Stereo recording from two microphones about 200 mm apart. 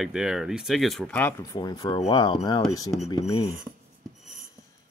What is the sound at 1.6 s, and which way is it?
Speech, 20° left (ahead or behind).